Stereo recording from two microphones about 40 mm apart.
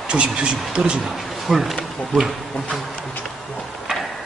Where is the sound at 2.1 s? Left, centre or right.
Centre.